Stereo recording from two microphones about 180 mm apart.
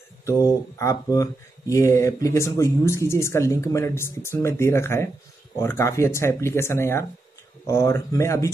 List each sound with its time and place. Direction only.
0.2 s speech: 15° left (ahead or behind)